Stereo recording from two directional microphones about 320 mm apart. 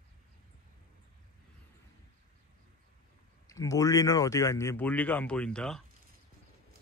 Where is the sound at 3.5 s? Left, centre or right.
Centre.